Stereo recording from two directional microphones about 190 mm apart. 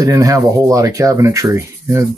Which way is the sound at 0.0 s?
20° right (ahead or behind).